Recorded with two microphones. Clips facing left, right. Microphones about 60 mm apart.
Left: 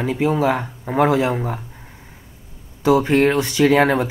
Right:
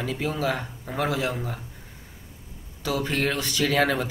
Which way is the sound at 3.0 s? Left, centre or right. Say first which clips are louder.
Left 10 dB; left.